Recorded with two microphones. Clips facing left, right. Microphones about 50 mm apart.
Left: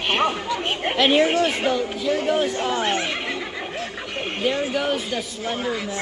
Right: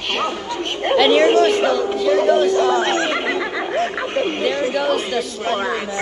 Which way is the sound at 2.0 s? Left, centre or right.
Right.